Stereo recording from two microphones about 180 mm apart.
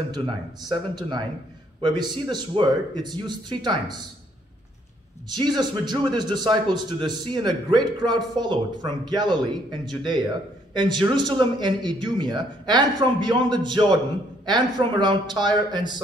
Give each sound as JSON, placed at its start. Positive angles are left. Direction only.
{"t": 0.7, "sound": "a man's voice", "side_deg": -25}
{"t": 5.3, "sound": "a man's voice", "side_deg": -25}